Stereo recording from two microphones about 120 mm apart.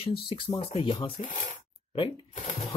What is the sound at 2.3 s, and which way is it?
Speech, 70° left (ahead or behind).